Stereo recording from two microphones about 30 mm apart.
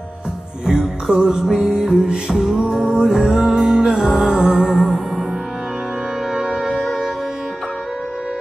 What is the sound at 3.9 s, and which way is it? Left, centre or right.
Music, centre.